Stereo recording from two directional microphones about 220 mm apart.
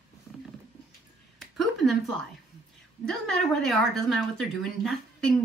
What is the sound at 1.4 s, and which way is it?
Speech, centre (ahead or behind).